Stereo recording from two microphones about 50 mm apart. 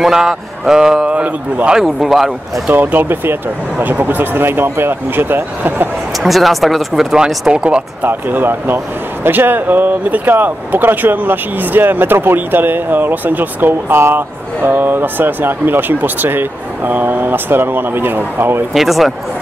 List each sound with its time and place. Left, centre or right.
0.0 s speech: centre
1.1 s a man's voice: right
1.7 s speech: centre
2.7 s speech: right
6.1 s speech: centre
7.5 s a man's voice: centre
8.0 s speech: right
13.9 s speech: right
18.7 s speech: centre